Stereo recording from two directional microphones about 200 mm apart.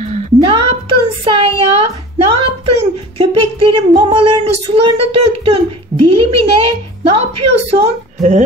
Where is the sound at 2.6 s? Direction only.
30° right (ahead or behind).